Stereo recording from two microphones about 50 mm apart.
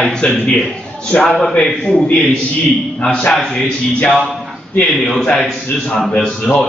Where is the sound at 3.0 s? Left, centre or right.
Centre.